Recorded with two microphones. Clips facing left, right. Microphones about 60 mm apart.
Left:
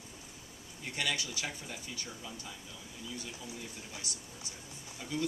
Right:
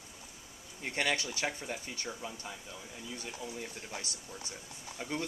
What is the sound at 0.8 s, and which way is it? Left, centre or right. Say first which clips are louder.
Speech: right 3 dB; right.